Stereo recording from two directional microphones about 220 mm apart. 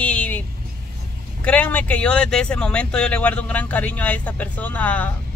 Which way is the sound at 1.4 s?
5° left (ahead or behind).